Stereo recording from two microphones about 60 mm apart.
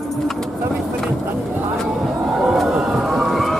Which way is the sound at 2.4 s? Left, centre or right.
Centre.